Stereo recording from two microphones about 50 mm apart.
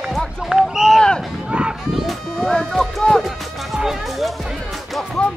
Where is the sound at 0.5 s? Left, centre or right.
Centre.